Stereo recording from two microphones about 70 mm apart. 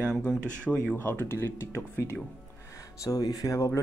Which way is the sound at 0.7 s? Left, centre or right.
Centre.